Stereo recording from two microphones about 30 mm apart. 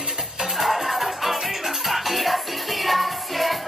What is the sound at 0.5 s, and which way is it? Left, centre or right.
Music, centre.